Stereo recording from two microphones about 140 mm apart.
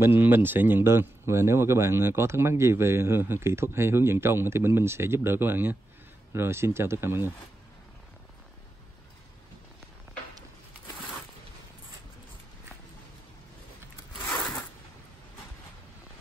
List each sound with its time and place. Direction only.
0.0 s a man's voice: 15° right (ahead or behind)